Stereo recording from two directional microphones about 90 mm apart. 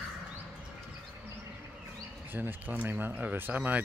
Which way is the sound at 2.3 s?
20° right (ahead or behind).